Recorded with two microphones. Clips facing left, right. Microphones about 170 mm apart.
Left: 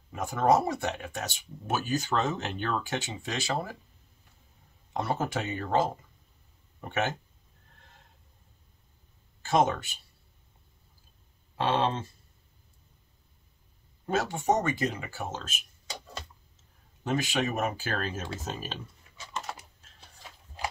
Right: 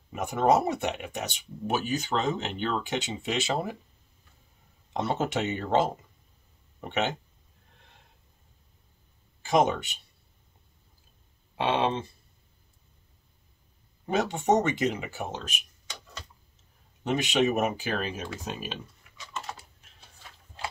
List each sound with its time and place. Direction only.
0.1 s speech: 20° right (ahead or behind)
4.9 s speech: 20° right (ahead or behind)
6.9 s speech: 20° right (ahead or behind)
9.4 s speech: 15° right (ahead or behind)
11.5 s speech: 15° right (ahead or behind)
14.1 s speech: 20° right (ahead or behind)
17.0 s speech: 20° right (ahead or behind)
19.1 s typing: 30° left (ahead or behind)